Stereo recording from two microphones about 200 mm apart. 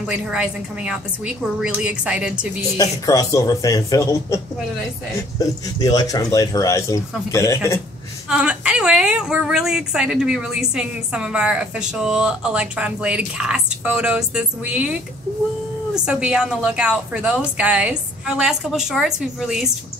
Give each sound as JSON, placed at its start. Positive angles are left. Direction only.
{"t": 0.0, "sound": "a woman's voice", "side_deg": -5}
{"t": 2.8, "sound": "speech", "side_deg": 15}
{"t": 5.4, "sound": "speech", "side_deg": 20}
{"t": 8.3, "sound": "a woman's voice", "side_deg": -5}